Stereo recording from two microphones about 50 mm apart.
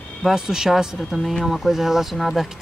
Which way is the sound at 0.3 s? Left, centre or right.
Centre.